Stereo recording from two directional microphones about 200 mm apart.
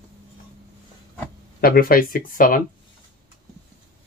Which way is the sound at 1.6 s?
45° left (ahead or behind).